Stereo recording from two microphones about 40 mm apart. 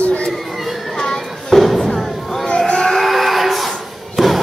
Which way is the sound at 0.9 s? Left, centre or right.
Centre.